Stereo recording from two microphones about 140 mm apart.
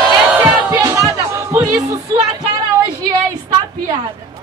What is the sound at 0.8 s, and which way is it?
Music, 25° right (ahead or behind).